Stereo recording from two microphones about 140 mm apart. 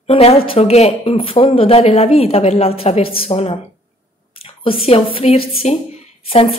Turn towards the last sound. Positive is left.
turn(degrees=45)  # may be behind; listen again after turning